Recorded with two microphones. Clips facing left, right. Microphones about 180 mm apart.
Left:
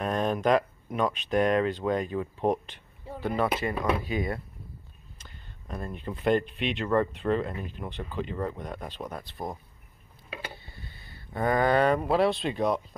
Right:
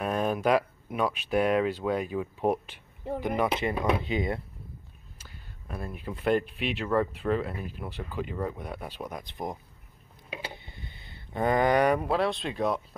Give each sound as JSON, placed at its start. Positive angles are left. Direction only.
{"t": 0.0, "sound": "speech", "side_deg": -5}
{"t": 5.2, "sound": "speech", "side_deg": -5}
{"t": 10.3, "sound": "a sound", "side_deg": -15}
{"t": 12.1, "sound": "speech", "side_deg": 0}